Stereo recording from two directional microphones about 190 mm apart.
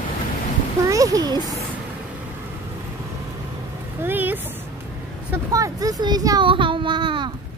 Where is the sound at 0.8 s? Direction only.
20° right (ahead or behind).